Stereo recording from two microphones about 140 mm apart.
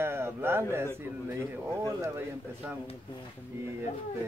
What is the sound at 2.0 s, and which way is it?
Speech, 20° right (ahead or behind).